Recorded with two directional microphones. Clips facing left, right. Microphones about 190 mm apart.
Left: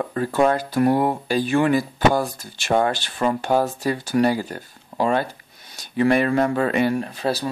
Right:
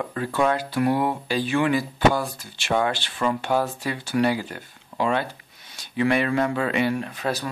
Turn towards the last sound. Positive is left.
turn(degrees=35)  # may be behind; listen again after turning